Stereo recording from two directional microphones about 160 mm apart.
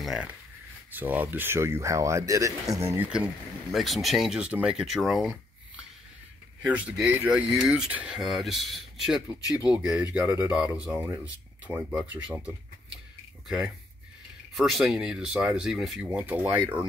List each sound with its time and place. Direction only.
0.0 s speech: centre (ahead or behind); by 3.1 s 20° right (ahead or behind)
3.7 s speech: centre (ahead or behind)
6.6 s speech: 10° right (ahead or behind)
14.5 s speech: centre (ahead or behind)